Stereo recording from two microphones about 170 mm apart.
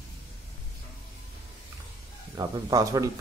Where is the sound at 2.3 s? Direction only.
20° right (ahead or behind).